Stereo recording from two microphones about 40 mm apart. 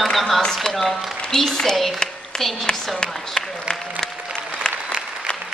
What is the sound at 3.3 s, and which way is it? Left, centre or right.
Applause, centre.